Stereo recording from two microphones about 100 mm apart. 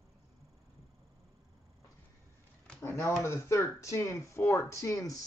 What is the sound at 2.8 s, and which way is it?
Speech, 25° left (ahead or behind).